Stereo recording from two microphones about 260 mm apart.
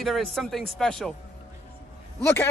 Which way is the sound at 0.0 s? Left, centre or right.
Centre.